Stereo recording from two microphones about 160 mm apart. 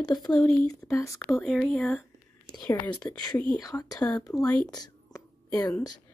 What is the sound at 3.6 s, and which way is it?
Speech, 20° left (ahead or behind).